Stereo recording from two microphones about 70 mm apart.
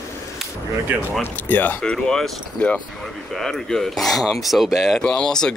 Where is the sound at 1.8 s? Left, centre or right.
Centre.